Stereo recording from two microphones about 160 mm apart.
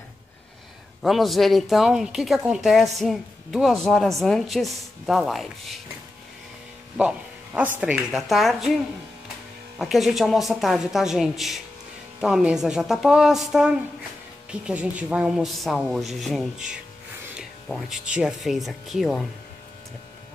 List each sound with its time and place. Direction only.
1.0 s speech: centre (ahead or behind)
7.0 s speech: 10° right (ahead or behind)
9.8 s speech: centre (ahead or behind)